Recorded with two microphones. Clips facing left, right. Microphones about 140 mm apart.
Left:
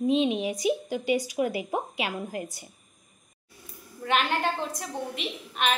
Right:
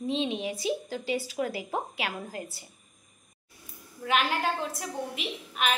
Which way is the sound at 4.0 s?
Centre (ahead or behind).